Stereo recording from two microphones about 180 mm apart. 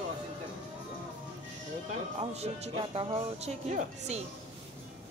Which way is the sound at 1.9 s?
35° right (ahead or behind).